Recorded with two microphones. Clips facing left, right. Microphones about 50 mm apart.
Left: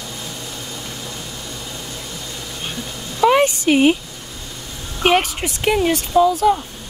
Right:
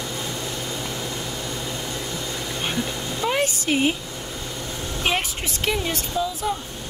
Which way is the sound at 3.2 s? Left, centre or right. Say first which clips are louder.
Left 11 dB; left.